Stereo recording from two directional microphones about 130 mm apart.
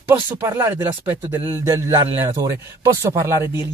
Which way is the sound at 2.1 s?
20° right (ahead or behind).